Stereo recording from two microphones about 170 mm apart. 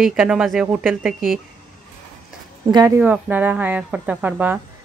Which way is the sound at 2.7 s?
25° right (ahead or behind).